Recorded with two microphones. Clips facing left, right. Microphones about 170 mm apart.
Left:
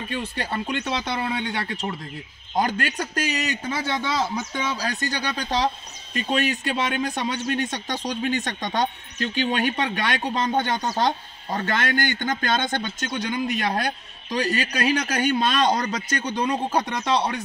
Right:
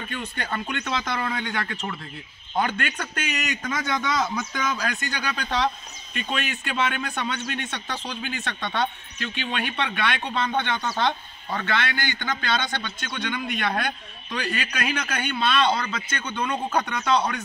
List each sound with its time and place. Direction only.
0.1 s speech: 30° left (ahead or behind)